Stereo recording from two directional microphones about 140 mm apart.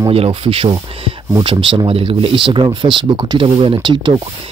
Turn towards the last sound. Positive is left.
turn(degrees=-35)  # may be behind; listen again after turning